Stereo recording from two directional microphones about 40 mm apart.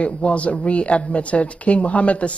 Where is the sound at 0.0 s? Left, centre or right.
Left.